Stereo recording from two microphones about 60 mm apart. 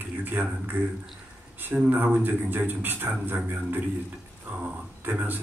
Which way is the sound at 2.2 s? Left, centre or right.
Right.